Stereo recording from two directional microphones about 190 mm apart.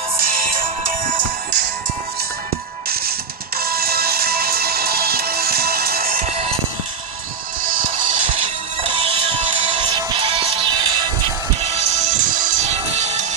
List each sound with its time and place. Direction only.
0.2 s music: 50° right (ahead or behind)
2.9 s music: 55° right (ahead or behind); by 6.6 s 30° right (ahead or behind)
7.6 s music: 45° right (ahead or behind)
8.8 s music: 30° right (ahead or behind)
11.6 s music: 35° right (ahead or behind)